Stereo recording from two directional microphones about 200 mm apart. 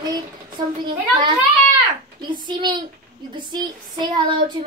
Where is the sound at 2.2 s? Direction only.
20° right (ahead or behind).